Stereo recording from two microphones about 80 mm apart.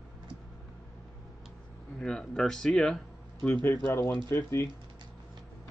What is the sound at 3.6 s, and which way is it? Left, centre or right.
Speech, left.